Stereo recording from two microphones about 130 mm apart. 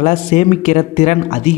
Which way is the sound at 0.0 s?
60° left (ahead or behind).